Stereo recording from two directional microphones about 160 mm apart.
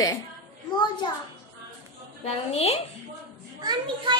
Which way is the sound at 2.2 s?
40° left (ahead or behind).